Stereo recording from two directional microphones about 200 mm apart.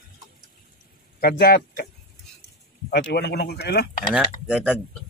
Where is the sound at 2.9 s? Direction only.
55° left (ahead or behind).